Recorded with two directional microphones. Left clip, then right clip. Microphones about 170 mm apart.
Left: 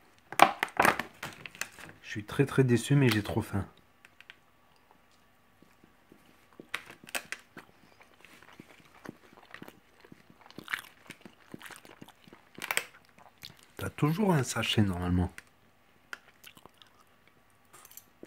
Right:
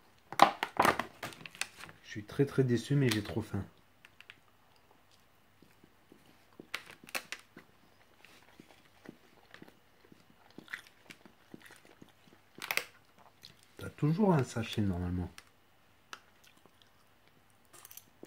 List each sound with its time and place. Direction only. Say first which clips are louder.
0.3 s a sound: left 3 dB; centre (ahead or behind)
2.0 s speech: left 3 dB; 30° left (ahead or behind)
4.0 s typing: left 2 dB; centre (ahead or behind)
6.7 s typewriter: left 3 dB; centre (ahead or behind)
10.5 s biting: left 9 dB; 40° left (ahead or behind)
11.6 s a sound: left 8 dB; 40° left (ahead or behind)
13.4 s speech: left 8 dB; 45° left (ahead or behind)